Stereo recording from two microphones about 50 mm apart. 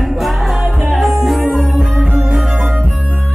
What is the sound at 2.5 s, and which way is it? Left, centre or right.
Music, right.